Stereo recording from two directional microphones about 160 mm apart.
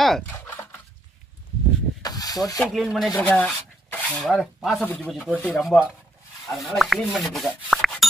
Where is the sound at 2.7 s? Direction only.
Centre (ahead or behind).